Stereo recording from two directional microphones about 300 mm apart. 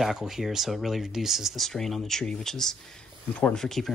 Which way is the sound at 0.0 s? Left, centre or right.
Centre.